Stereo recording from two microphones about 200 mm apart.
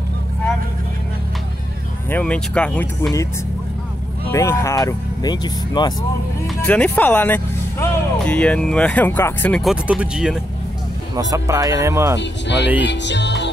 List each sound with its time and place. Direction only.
2.0 s speech: 5° left (ahead or behind)
4.3 s speech: 15° left (ahead or behind)
6.4 s speech: 5° left (ahead or behind)
11.1 s speech: 15° right (ahead or behind)
12.2 s music: 60° left (ahead or behind)